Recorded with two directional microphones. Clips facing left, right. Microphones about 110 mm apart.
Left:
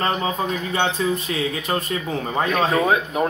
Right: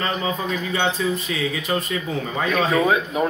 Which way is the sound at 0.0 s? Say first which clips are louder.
Left 2 dB; 50° left (ahead or behind).